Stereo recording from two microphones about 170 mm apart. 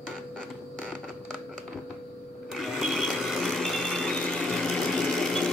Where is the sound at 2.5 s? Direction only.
Centre (ahead or behind).